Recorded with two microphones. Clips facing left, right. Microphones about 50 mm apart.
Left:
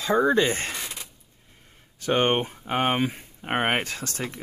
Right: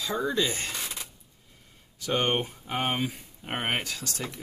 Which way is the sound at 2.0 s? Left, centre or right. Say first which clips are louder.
Left 4 dB; left.